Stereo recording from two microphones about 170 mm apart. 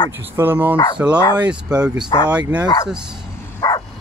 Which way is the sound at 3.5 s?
20° left (ahead or behind).